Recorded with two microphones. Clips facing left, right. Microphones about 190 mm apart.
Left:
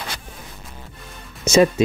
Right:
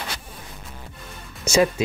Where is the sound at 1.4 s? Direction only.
20° left (ahead or behind).